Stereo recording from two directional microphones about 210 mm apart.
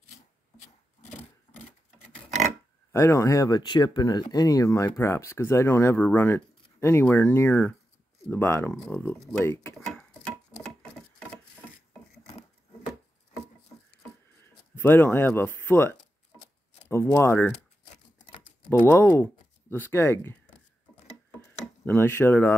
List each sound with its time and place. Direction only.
1.5 s filing: 30° left (ahead or behind)
2.9 s speech: 15° left (ahead or behind)
14.8 s speech: 10° left (ahead or behind)
21.8 s speech: 10° left (ahead or behind)